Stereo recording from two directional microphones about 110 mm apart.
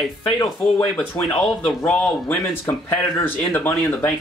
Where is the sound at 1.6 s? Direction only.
10° left (ahead or behind).